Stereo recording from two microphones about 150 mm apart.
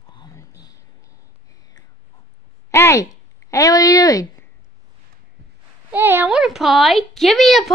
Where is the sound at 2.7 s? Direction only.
20° left (ahead or behind).